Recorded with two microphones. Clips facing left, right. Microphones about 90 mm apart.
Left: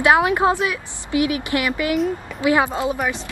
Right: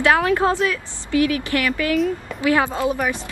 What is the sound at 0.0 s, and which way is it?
A woman's voice, 20° left (ahead or behind).